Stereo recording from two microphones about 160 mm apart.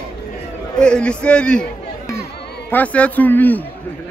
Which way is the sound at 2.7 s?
10° left (ahead or behind).